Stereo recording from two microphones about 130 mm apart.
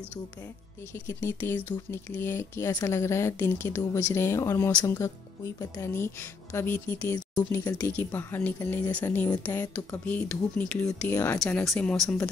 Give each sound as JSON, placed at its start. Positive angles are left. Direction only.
{"t": 0.9, "sound": "speech", "side_deg": 20}
{"t": 7.2, "sound": "speech", "side_deg": 30}
{"t": 7.9, "sound": "speech", "side_deg": 15}